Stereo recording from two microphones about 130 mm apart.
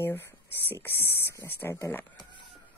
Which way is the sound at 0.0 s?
15° left (ahead or behind).